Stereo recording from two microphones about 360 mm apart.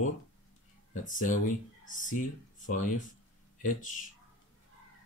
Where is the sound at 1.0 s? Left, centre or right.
Left.